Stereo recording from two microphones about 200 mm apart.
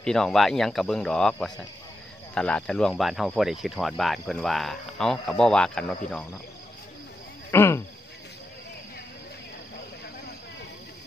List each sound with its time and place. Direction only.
0.0 s speech: 5° left (ahead or behind)
7.5 s speech: 10° left (ahead or behind)